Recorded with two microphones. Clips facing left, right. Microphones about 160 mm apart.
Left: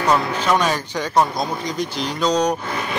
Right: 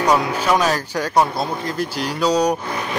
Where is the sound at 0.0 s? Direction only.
10° right (ahead or behind).